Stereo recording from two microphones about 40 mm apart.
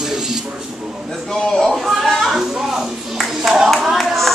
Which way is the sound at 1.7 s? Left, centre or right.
Centre.